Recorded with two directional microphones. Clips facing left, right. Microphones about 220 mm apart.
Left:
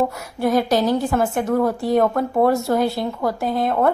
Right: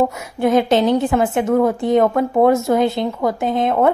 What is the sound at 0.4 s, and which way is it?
A woman's voice, 20° right (ahead or behind).